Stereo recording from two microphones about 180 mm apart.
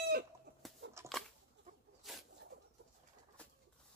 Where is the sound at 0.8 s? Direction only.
80° right.